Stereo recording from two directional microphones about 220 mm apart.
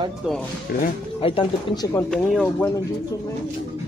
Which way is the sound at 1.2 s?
25° left (ahead or behind).